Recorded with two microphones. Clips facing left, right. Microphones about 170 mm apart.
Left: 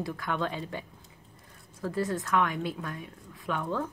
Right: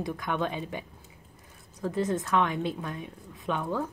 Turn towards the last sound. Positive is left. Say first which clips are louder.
# right 2 dB
turn(degrees=-20)  # may be behind; listen again after turning